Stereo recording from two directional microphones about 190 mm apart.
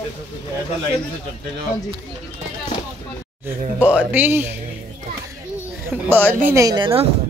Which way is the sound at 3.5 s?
10° right (ahead or behind).